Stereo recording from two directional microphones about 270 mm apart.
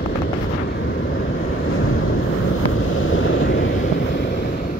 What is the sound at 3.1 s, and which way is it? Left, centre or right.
Vehicle, left.